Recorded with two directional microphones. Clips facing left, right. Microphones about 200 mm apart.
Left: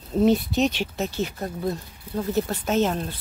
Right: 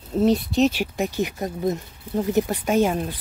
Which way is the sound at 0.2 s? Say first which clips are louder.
Right 1 dB; centre (ahead or behind).